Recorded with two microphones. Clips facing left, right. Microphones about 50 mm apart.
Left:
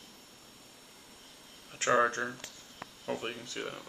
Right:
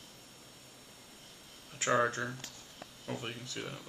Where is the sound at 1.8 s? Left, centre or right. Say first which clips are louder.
Left 3 dB; centre.